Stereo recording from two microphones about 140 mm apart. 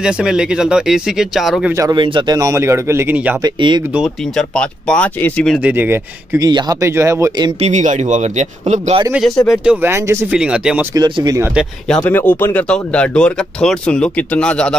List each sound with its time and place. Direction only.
0.0 s speech: 5° right (ahead or behind)
1.7 s speech: 20° right (ahead or behind)
2.0 s speech: 35° right (ahead or behind); by 3.3 s 15° right (ahead or behind)
3.4 s speech: 35° right (ahead or behind)
3.9 s speech: centre (ahead or behind)
5.6 s speech: 15° right (ahead or behind)
6.4 s speech: 25° right (ahead or behind)
7.6 s speech: 60° right (ahead or behind)
9.1 s speech: centre (ahead or behind)
9.7 s speech: 15° right (ahead or behind)
10.3 s speech: 5° right (ahead or behind)
11.0 s speech: 30° right (ahead or behind)
11.9 s speech: 10° left (ahead or behind)